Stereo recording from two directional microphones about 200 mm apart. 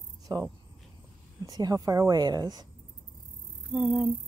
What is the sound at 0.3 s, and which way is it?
A woman's voice, 20° right (ahead or behind).